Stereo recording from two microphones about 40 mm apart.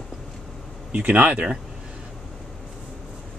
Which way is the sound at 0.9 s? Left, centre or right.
Right.